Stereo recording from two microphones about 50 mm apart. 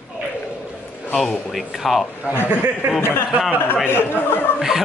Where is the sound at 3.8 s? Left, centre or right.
Left.